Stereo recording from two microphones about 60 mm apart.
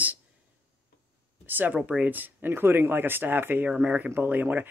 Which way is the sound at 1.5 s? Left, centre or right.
Right.